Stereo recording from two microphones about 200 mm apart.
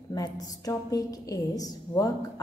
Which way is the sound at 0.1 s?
20° left (ahead or behind).